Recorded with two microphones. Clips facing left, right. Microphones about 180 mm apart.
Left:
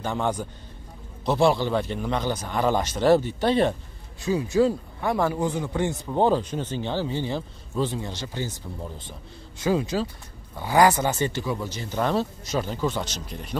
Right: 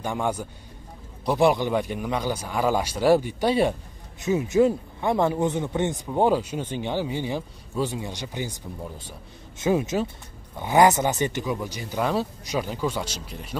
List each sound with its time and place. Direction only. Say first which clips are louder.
0.0 s speech: even; 10° right (ahead or behind)
4.2 s speech: right 1 dB; 20° right (ahead or behind)
6.0 s speech: even; 10° right (ahead or behind)
9.6 s speech: right 1 dB; 20° right (ahead or behind); by 13.6 s 5° right (ahead or behind)